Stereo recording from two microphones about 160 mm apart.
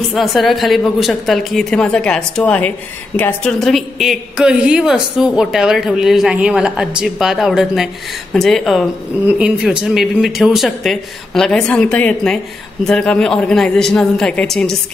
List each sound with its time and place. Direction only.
0.1 s a woman's voice: centre (ahead or behind)